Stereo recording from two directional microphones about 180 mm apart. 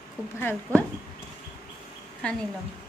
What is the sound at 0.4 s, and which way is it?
Speech, 10° left (ahead or behind).